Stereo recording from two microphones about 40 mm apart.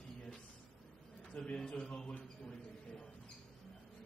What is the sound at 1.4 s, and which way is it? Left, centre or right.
Speech, left.